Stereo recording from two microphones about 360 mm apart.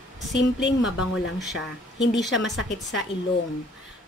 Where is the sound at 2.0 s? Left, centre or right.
Left.